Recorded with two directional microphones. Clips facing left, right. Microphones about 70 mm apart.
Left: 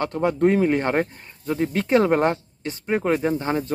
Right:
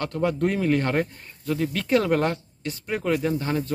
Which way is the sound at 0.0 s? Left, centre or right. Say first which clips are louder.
Left 4 dB; left.